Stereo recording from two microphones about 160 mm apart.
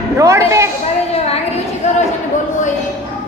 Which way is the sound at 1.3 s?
40° left (ahead or behind).